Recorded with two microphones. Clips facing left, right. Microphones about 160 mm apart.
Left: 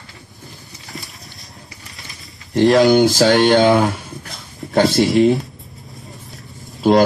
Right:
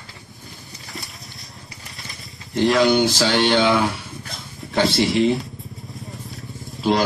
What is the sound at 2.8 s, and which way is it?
Speech, 45° left (ahead or behind).